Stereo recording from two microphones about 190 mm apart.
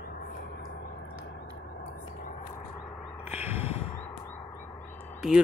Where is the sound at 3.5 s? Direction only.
35° left (ahead or behind).